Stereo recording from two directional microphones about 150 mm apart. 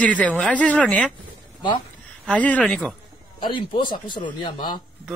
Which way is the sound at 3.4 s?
30° left (ahead or behind).